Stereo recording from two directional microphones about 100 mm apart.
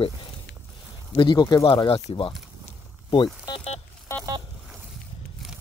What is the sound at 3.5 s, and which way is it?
Telephone dialing, 90° left.